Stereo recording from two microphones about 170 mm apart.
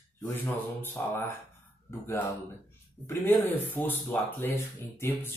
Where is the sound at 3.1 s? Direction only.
10° left (ahead or behind).